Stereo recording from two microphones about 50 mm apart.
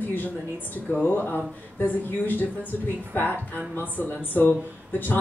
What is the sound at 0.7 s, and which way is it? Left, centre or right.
Speech, left.